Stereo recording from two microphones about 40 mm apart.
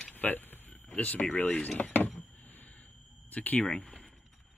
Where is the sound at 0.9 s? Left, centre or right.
Left.